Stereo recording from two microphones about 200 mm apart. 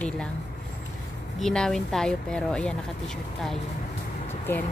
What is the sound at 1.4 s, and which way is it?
Speech, 5° left (ahead or behind).